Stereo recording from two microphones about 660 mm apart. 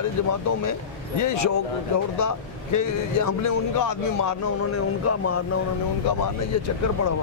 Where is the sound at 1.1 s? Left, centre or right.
Left.